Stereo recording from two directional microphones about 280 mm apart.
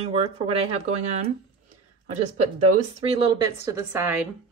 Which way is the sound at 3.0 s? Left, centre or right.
Centre.